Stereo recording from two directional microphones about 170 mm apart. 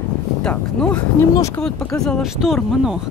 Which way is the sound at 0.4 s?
5° left (ahead or behind).